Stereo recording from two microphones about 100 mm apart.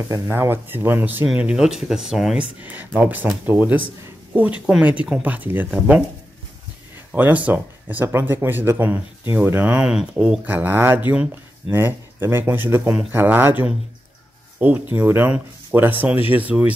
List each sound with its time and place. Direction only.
0.1 s speech: 35° right (ahead or behind)
0.4 s speech: 20° right (ahead or behind); by 2.4 s 5° right (ahead or behind)
2.6 s speech: 15° right (ahead or behind)
7.1 s speech: 15° right (ahead or behind)
14.6 s speech: 15° right (ahead or behind)